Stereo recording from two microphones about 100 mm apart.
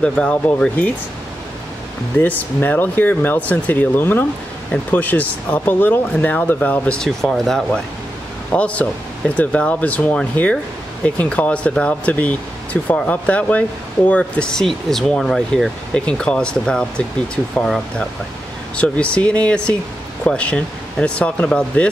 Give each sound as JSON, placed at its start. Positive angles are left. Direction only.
{"t": 0.0, "sound": "speech", "side_deg": 10}
{"t": 2.1, "sound": "speech", "side_deg": 15}
{"t": 18.8, "sound": "speech", "side_deg": 10}